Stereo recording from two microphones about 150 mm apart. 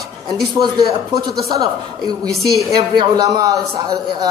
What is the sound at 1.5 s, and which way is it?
A man's voice, 25° right (ahead or behind).